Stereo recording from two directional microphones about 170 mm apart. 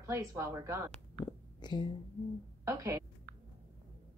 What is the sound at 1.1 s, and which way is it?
Whispering, 25° left (ahead or behind).